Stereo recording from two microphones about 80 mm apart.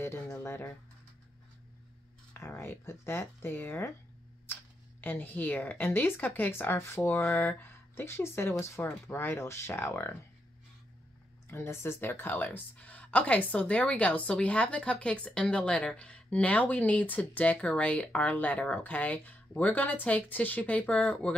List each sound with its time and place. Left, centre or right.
0.0 s a sound: left
2.4 s speech: left
4.5 s camera: left
5.0 s speech: left
11.5 s speech: left; by 21.4 s centre